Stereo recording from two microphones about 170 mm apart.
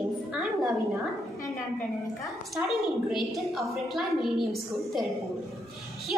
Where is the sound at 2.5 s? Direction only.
Centre (ahead or behind).